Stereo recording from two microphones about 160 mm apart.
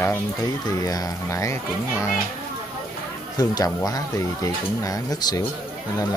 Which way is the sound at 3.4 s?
20° left (ahead or behind).